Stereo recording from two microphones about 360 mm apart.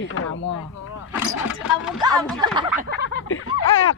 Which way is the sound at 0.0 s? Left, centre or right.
Left.